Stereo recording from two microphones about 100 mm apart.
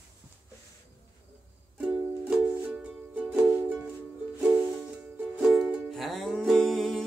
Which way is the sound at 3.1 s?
20° right (ahead or behind).